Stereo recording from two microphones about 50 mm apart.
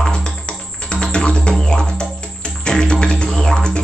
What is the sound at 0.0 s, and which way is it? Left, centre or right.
Music, centre.